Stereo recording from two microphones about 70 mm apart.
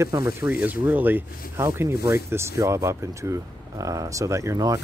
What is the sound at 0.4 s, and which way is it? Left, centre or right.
Speech, right.